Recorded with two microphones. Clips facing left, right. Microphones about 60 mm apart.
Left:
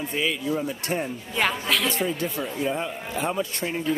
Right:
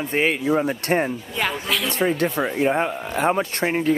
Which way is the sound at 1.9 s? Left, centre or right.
Right.